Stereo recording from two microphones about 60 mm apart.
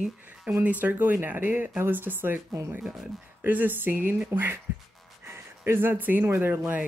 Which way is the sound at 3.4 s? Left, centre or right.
Right.